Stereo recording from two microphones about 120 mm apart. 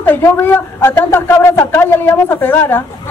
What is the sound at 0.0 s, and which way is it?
Speech, 15° left (ahead or behind).